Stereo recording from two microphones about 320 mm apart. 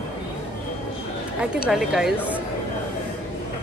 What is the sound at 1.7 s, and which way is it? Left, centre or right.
Speech, centre.